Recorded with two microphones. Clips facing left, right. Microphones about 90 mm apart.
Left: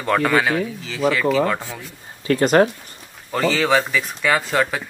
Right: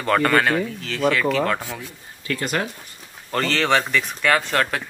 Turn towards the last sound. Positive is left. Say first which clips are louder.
# left 1 dB
turn(degrees=5)  # may be behind; listen again after turning